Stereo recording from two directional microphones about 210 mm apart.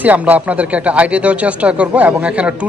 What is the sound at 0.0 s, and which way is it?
Speech, 5° right (ahead or behind).